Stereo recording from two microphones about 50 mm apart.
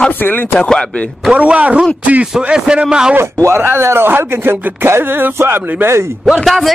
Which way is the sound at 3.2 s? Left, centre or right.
Right.